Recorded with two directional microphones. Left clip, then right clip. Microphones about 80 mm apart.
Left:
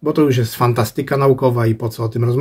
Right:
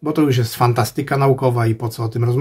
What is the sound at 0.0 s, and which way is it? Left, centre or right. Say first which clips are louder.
Speech: left 2 dB; right.